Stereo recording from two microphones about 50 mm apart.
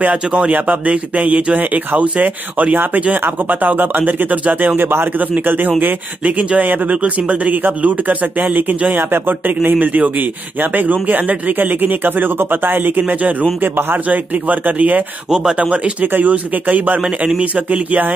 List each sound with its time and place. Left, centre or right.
0.1 s speech: right
15.3 s speech: centre
16.1 s a man's voice: right